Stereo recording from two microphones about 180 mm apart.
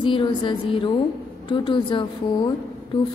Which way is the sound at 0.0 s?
25° left (ahead or behind).